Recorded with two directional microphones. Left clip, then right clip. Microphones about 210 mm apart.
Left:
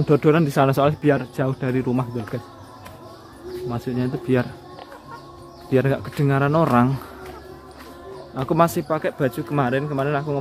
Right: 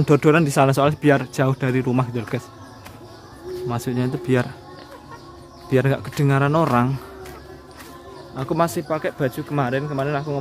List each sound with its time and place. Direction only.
0.0 s speech: 15° right (ahead or behind)
3.6 s speech: 15° right (ahead or behind)
5.7 s speech: 10° right (ahead or behind)
8.4 s speech: 15° left (ahead or behind)